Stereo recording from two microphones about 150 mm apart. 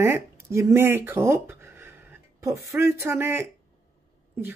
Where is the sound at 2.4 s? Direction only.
20° right (ahead or behind).